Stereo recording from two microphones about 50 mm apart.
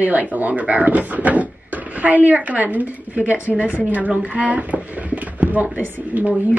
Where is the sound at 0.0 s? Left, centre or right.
Right.